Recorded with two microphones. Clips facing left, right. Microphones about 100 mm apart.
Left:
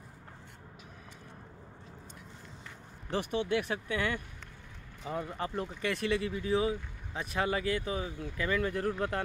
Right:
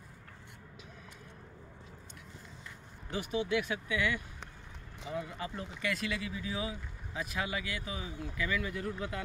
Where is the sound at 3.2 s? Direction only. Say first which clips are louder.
Left 2 dB; 50° left (ahead or behind).